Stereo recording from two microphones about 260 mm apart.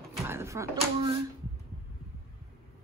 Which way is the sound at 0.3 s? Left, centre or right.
Centre.